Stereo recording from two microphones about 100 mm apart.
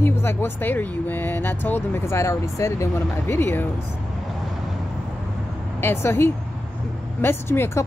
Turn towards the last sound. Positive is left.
turn(degrees=25)  # may be behind; listen again after turning